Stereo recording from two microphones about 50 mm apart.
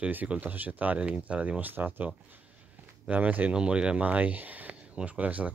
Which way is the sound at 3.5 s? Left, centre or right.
Centre.